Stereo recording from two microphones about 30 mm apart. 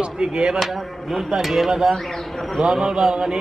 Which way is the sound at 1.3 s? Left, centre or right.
Centre.